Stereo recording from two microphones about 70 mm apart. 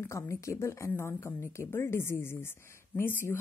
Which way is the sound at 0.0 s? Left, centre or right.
Left.